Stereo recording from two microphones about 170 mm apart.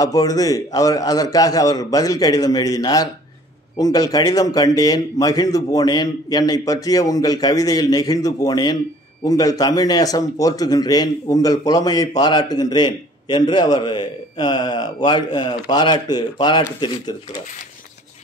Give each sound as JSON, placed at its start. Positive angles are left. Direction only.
{"t": 0.0, "sound": "speech", "side_deg": 20}